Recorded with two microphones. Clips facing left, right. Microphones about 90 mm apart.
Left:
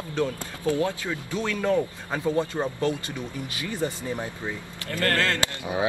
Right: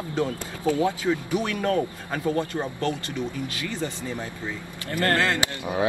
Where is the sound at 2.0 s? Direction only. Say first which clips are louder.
Even; 20° left (ahead or behind).